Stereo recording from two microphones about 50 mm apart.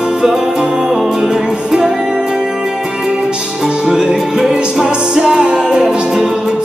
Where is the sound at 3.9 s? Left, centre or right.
Centre.